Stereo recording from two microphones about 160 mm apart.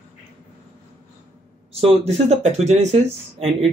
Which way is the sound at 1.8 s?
40° right (ahead or behind).